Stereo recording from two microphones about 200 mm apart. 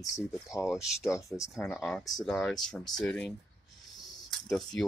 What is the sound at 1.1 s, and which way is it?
Speech, 15° left (ahead or behind).